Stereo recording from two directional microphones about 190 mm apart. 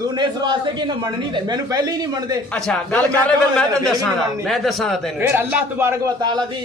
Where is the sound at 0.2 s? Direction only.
25° right (ahead or behind).